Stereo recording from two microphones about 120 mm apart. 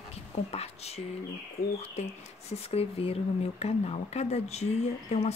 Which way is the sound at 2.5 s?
60° left (ahead or behind).